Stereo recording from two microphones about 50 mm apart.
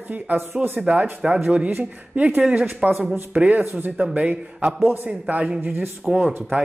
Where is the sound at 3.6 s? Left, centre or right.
Right.